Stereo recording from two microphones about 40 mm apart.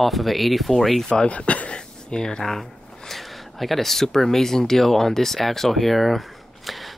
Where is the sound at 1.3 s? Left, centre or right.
Left.